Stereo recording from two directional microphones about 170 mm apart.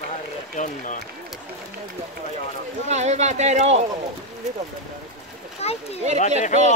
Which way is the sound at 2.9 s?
40° right (ahead or behind).